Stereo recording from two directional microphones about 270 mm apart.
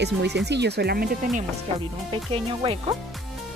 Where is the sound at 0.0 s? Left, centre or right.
Right.